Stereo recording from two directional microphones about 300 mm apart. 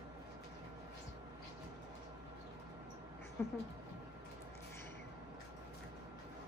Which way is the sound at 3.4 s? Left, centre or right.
Centre.